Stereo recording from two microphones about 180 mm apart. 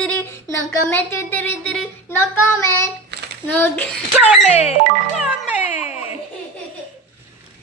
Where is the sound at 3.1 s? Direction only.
70° right (ahead or behind).